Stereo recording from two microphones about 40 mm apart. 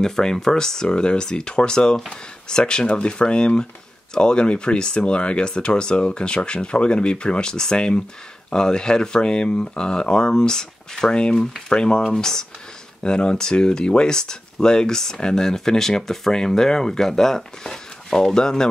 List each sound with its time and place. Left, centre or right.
0.0 s speech: centre